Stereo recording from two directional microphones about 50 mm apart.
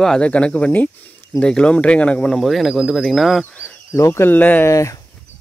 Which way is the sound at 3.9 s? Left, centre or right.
Left.